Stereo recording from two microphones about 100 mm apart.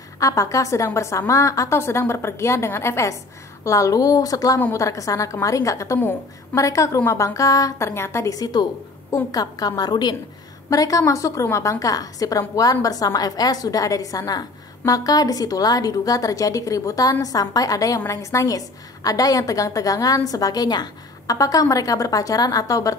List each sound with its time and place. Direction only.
0.2 s a woman's voice: 35° left (ahead or behind)